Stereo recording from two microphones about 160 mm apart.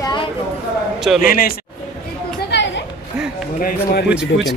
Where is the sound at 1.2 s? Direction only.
65° left (ahead or behind).